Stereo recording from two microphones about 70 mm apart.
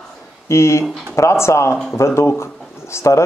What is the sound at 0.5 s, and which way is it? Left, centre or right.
A man's voice, left.